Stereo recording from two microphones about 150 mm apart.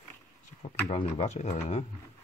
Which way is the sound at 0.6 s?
40° left (ahead or behind).